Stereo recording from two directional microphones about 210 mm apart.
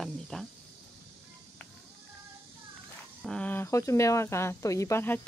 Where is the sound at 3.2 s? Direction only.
5° left (ahead or behind).